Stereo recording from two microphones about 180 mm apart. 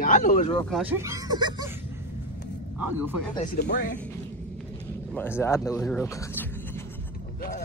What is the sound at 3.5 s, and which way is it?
Speech, 65° left (ahead or behind).